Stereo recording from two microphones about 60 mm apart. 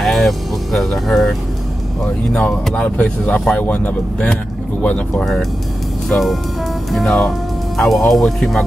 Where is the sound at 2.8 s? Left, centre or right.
Left.